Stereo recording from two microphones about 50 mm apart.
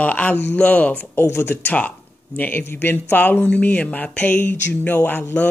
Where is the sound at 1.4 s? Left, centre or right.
Left.